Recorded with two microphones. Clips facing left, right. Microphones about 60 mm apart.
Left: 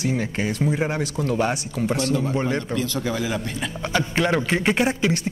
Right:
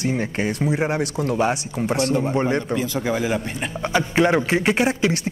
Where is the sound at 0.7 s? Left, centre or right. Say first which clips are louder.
Right 2 dB; centre.